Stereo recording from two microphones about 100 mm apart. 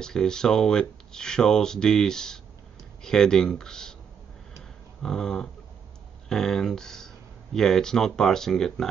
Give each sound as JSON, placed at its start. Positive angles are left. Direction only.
{"t": 0.0, "sound": "speech", "side_deg": 5}
{"t": 4.6, "sound": "a sound", "side_deg": 5}
{"t": 6.2, "sound": "speech", "side_deg": 5}